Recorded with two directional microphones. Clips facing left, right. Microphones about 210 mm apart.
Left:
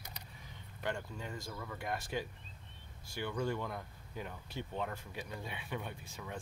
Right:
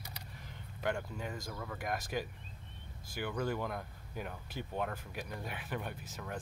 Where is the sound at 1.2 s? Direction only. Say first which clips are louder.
Right 2 dB; 10° right (ahead or behind).